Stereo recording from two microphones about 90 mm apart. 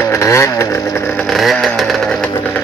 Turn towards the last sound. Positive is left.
turn(degrees=0)  # may be behind; listen again after turning